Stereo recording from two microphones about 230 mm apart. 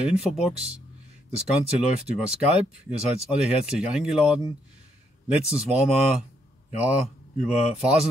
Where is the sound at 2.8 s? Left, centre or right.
Centre.